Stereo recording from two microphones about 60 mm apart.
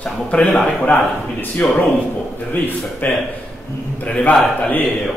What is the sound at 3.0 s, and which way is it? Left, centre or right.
Speech, left.